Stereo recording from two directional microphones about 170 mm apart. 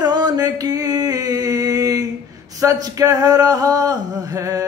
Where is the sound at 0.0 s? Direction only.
25° right (ahead or behind).